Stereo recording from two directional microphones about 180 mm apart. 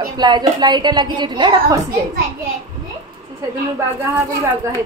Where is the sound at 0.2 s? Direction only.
25° right (ahead or behind).